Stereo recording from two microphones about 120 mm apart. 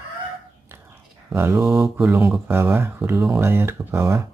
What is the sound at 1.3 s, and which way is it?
Speech, 20° right (ahead or behind).